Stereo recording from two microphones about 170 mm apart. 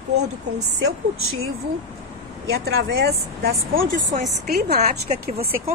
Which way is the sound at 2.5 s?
65° right (ahead or behind).